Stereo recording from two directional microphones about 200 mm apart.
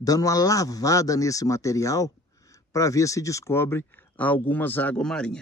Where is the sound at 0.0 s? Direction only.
15° left (ahead or behind).